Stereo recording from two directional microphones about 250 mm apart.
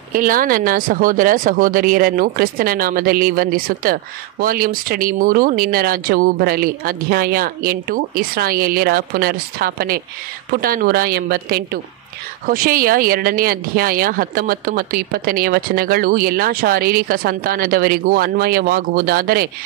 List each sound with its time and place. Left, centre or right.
0.1 s speech: right